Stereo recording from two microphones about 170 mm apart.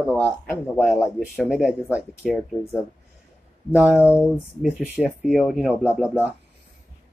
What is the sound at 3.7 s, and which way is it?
Speech, 5° right (ahead or behind).